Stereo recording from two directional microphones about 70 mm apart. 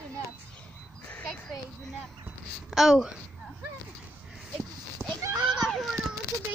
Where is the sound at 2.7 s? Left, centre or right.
Centre.